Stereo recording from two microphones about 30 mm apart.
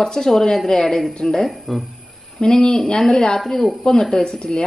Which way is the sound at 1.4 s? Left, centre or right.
Centre.